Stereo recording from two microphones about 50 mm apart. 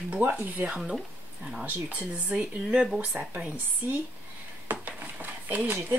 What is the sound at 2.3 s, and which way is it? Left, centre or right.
Speech, right.